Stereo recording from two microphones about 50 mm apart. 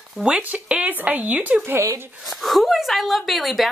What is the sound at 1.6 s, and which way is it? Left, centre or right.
Speech, right.